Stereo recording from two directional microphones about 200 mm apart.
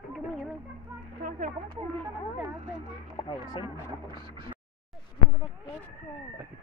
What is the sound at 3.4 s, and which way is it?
Speech, 20° left (ahead or behind).